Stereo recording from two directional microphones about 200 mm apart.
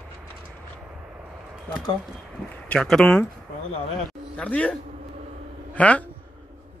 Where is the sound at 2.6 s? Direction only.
5° left (ahead or behind).